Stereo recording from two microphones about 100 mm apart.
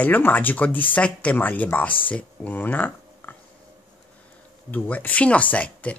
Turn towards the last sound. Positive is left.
turn(degrees=15)  # may be behind; listen again after turning